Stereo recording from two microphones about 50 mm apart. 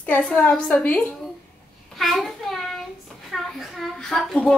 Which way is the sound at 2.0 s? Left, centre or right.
Centre.